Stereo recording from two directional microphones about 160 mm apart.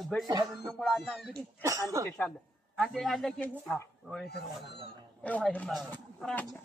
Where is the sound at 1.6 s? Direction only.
20° right (ahead or behind).